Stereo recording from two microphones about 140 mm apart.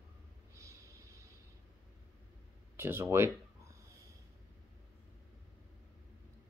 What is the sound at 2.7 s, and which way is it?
Speech, 15° right (ahead or behind).